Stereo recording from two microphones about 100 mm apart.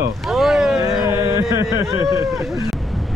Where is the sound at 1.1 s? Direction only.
25° right (ahead or behind).